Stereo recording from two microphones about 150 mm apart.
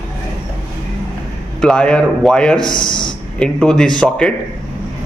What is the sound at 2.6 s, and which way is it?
Speech, 30° left (ahead or behind).